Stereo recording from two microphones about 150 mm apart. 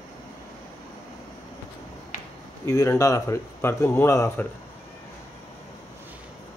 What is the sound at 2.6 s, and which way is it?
Speech, 20° left (ahead or behind).